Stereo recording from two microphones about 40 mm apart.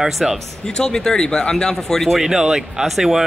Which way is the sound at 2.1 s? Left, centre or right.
Centre.